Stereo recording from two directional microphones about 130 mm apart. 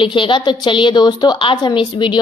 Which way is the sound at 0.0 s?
40° left (ahead or behind).